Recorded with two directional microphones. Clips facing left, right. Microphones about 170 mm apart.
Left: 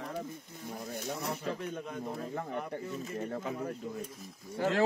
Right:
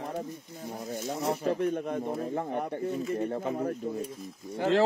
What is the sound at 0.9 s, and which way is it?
Speech, 65° right (ahead or behind).